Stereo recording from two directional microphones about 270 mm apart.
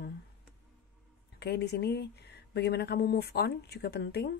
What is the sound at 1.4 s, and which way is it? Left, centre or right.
Speech, left.